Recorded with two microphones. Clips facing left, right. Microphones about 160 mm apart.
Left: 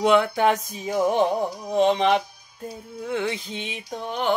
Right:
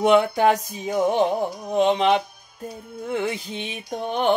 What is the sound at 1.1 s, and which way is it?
Music, centre (ahead or behind).